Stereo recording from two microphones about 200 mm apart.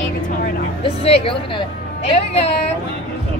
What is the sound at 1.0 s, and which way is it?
A woman's voice, 30° left (ahead or behind).